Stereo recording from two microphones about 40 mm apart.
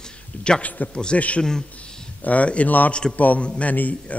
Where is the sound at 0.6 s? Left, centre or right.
Left.